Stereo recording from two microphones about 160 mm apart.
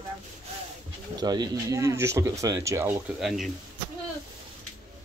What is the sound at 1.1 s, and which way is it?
Speech, 25° right (ahead or behind).